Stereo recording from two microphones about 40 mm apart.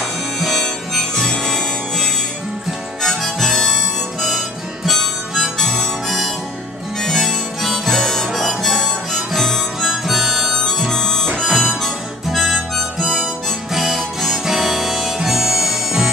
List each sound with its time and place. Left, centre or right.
0.6 s harmonica: centre
9.8 s harmonica: centre
10.6 s harmonica: centre
12.3 s harmonica: centre
13.0 s harmonica: right
13.9 s harmonica: centre
14.4 s harmonica: centre